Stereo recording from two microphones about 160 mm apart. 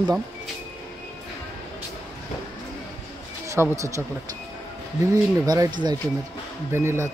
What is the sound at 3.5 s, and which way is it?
Speech, 20° right (ahead or behind).